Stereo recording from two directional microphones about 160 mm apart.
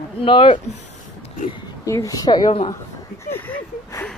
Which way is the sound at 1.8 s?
20° left (ahead or behind).